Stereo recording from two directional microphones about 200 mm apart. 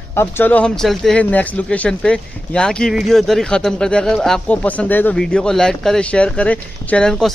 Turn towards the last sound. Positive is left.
turn(degrees=5)  # may be behind; listen again after turning